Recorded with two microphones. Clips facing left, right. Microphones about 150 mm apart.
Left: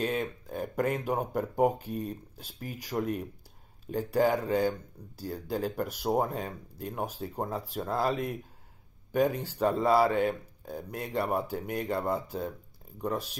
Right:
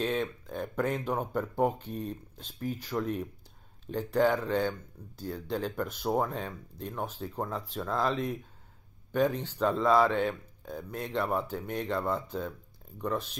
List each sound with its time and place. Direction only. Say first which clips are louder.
0.0 s speech: even; 10° left (ahead or behind)
9.1 s speech: left 1 dB; 10° left (ahead or behind)